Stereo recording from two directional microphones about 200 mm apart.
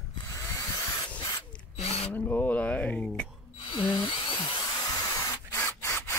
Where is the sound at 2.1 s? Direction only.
10° left (ahead or behind).